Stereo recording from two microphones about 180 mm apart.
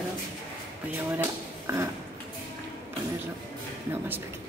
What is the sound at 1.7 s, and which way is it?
Speech, 15° right (ahead or behind).